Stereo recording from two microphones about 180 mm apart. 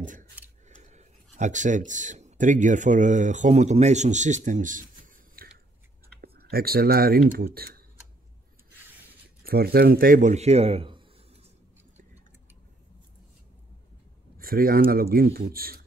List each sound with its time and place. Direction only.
0.7 s speech: 40° right (ahead or behind); by 7.8 s 55° right (ahead or behind)
9.4 s a man's voice: 55° right (ahead or behind); by 11.1 s 30° right (ahead or behind)
14.4 s speech: 55° right (ahead or behind)